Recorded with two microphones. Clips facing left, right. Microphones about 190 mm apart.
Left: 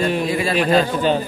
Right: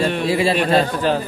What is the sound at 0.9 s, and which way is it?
Speech, centre (ahead or behind).